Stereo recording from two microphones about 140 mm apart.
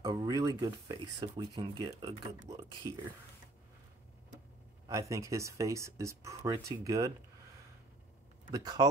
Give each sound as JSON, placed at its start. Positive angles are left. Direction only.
{"t": 0.0, "sound": "speech", "side_deg": -25}
{"t": 4.8, "sound": "speech", "side_deg": -20}
{"t": 8.5, "sound": "speech", "side_deg": -30}